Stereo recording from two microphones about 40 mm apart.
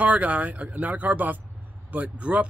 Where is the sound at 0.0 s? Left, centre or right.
Right.